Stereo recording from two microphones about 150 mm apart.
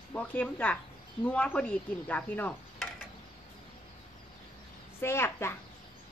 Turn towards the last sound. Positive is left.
turn(degrees=15)  # may be behind; listen again after turning